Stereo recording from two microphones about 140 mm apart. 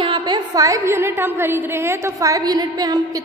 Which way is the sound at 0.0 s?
35° right (ahead or behind).